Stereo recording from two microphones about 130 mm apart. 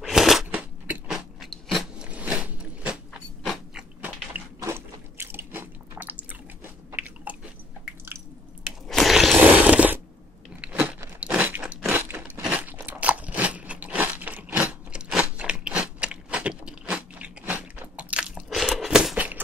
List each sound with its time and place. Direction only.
0.0 s crunch: centre (ahead or behind)
0.5 s biting: 10° right (ahead or behind)
4.6 s biting: 20° right (ahead or behind)
6.9 s chewing: 15° right (ahead or behind)
8.8 s a sound: centre (ahead or behind)
10.6 s biting: 10° right (ahead or behind)
11.1 s crunch: 10° right (ahead or behind)